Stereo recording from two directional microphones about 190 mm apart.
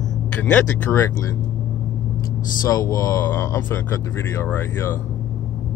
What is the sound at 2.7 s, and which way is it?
Speech, 15° left (ahead or behind).